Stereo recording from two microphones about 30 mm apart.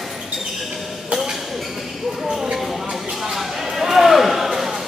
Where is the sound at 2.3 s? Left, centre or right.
Centre.